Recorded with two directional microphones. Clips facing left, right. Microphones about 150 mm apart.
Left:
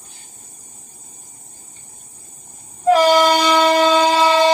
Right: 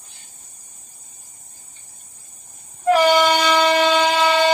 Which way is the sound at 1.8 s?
50° left (ahead or behind).